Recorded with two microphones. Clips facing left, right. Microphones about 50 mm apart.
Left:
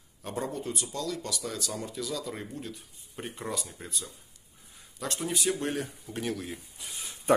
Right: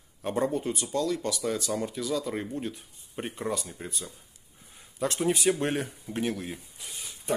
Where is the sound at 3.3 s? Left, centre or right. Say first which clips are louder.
Right 4 dB; centre.